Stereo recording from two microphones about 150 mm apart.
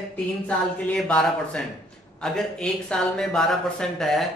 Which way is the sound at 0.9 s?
5° left (ahead or behind).